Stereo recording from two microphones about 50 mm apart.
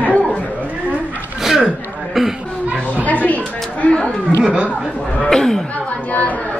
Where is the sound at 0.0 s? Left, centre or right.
Left.